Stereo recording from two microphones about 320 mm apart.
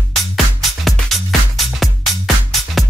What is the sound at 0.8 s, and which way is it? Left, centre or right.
Music, centre.